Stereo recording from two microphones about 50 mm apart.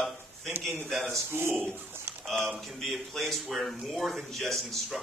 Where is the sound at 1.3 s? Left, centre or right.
Right.